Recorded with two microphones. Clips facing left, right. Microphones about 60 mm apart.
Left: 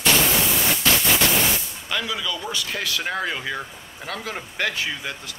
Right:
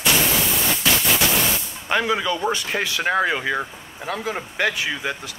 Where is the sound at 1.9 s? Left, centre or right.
Right.